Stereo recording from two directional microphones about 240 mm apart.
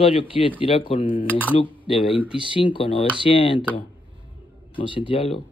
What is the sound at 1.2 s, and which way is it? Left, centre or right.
Speech, centre.